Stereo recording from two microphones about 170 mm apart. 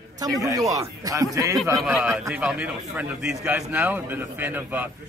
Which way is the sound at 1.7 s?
Centre (ahead or behind).